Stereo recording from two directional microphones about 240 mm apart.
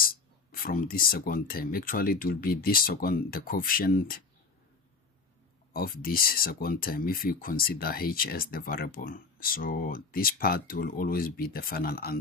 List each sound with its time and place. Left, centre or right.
0.0 s speech: left
5.7 s speech: left